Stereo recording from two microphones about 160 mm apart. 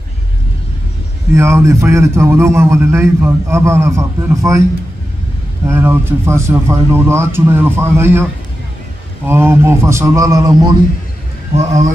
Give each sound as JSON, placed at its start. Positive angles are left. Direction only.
{"t": 1.3, "sound": "a man's voice", "side_deg": -15}
{"t": 5.7, "sound": "a man's voice", "side_deg": -15}
{"t": 11.5, "sound": "speech", "side_deg": -50}